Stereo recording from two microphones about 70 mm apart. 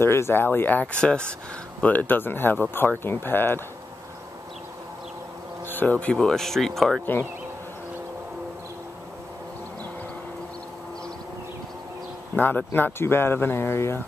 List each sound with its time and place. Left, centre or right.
0.0 s speech: left
0.9 s speech: centre
1.8 s speech: left
5.7 s speech: left
6.1 s speech: centre
12.4 s speech: left